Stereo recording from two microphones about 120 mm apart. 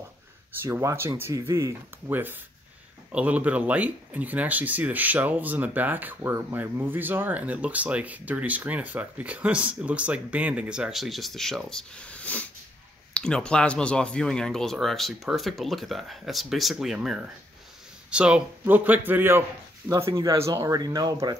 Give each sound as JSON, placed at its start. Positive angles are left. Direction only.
{"t": 0.5, "sound": "speech", "side_deg": -20}